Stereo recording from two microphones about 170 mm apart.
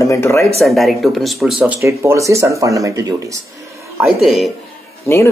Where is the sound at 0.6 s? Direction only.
Centre (ahead or behind); by 3.4 s 20° right (ahead or behind).